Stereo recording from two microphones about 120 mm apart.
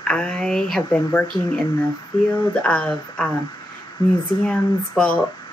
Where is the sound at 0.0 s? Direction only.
10° left (ahead or behind).